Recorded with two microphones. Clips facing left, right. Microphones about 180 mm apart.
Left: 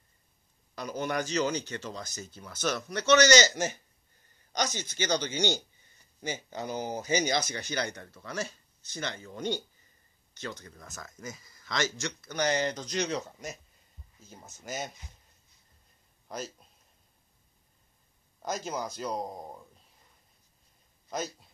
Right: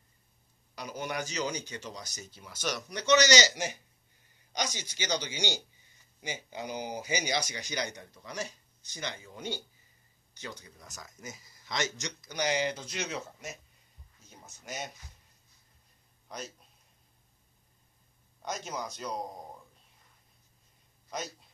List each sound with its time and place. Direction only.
0.7 s speech: 10° right (ahead or behind)
3.2 s a man's voice: 55° left (ahead or behind)
4.5 s speech: 10° right (ahead or behind)
16.3 s speech: centre (ahead or behind)
18.4 s speech: centre (ahead or behind)